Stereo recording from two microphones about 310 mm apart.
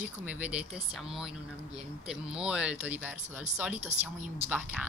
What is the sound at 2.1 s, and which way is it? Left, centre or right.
A woman's voice, centre.